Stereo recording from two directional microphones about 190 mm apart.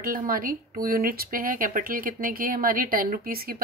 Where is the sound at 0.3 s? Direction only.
50° right (ahead or behind).